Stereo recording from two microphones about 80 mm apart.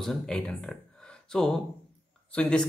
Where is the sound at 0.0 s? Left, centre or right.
Centre.